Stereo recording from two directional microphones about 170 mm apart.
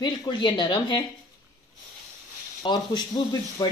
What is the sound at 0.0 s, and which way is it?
Speech, 25° left (ahead or behind).